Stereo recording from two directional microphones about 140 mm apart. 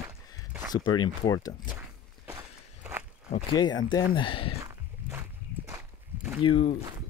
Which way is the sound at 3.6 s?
30° left (ahead or behind).